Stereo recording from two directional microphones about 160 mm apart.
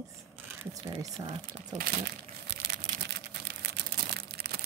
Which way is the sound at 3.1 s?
90° right.